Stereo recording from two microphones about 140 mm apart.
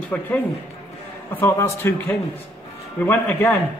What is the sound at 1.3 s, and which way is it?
Speech, 15° left (ahead or behind).